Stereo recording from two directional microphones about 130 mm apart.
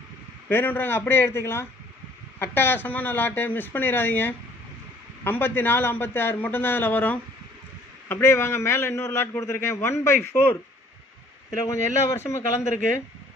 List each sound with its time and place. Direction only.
0.5 s a man's voice: 15° left (ahead or behind)
11.6 s a man's voice: 20° left (ahead or behind)